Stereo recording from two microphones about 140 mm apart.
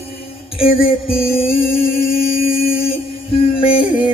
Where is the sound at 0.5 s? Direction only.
40° left (ahead or behind).